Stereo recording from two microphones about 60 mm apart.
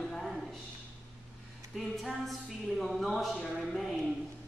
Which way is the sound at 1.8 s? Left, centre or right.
Centre.